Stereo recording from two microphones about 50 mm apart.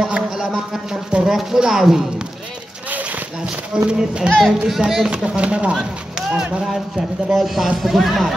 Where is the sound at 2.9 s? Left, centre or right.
Right.